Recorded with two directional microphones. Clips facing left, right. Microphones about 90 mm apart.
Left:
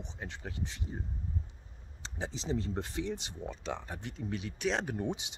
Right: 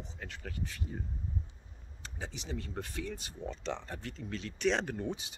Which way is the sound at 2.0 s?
30° left (ahead or behind).